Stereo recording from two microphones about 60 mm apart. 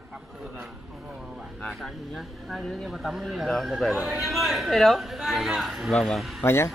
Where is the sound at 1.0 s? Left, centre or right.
Centre.